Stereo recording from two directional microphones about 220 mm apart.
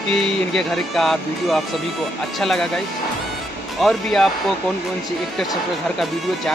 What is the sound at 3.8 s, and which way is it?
Speech, centre (ahead or behind).